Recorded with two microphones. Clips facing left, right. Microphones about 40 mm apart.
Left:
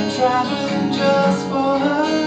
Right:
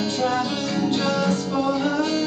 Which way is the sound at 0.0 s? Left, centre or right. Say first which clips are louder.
Left 5 dB; centre.